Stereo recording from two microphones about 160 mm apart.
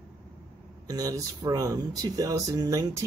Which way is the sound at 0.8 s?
20° right (ahead or behind).